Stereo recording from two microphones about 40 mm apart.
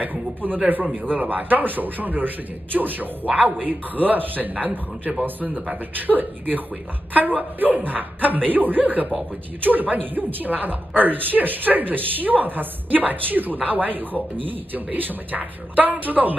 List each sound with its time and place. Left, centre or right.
0.0 s speech: right
3.3 s speech: right